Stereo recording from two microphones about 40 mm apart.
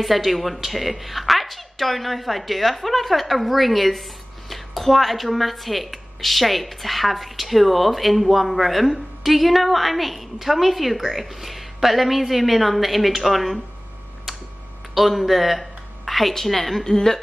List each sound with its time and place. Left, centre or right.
0.0 s a woman's voice: centre
15.0 s a woman's voice: centre